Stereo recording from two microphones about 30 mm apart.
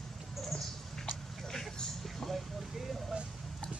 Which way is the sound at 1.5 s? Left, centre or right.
Centre.